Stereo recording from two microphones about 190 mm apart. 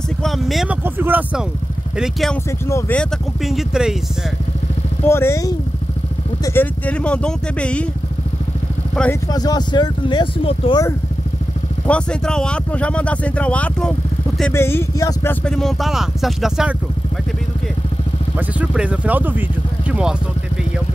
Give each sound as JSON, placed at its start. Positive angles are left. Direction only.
{"t": 0.2, "sound": "vehicle", "side_deg": 0}
{"t": 0.8, "sound": "speech", "side_deg": -10}
{"t": 5.0, "sound": "speech", "side_deg": 15}
{"t": 9.3, "sound": "speech", "side_deg": 20}
{"t": 11.8, "sound": "speech", "side_deg": 5}
{"t": 15.4, "sound": "speech", "side_deg": 5}
{"t": 18.6, "sound": "speech", "side_deg": -5}